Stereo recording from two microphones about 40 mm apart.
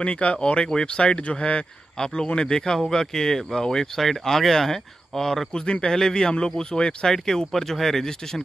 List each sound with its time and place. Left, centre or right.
0.0 s speech: left
1.0 s speech: left; by 8.1 s centre